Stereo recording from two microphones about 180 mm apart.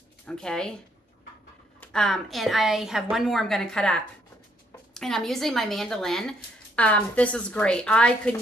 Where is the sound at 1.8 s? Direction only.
5° left (ahead or behind).